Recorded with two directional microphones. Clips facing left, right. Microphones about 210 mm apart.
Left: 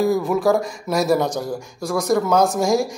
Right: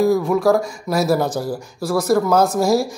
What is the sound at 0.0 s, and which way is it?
Speech, centre (ahead or behind).